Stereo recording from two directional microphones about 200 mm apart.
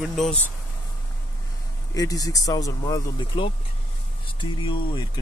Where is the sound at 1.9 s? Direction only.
15° left (ahead or behind).